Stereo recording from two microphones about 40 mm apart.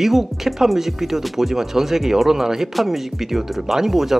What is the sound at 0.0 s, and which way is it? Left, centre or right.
Speech, centre.